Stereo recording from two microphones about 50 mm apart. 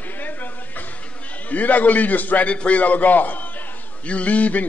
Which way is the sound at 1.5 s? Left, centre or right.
Left.